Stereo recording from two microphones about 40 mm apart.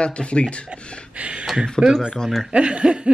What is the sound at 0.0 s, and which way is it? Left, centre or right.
Speech, left.